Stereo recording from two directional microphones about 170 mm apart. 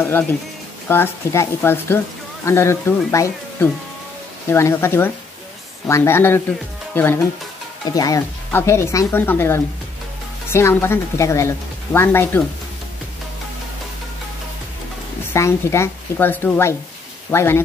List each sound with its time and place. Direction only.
0.8 s speech: 15° left (ahead or behind)
4.5 s speech: 15° left (ahead or behind)
15.3 s speech: 15° left (ahead or behind)